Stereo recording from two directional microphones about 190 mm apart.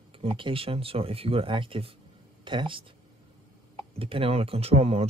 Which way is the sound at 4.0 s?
30° right (ahead or behind).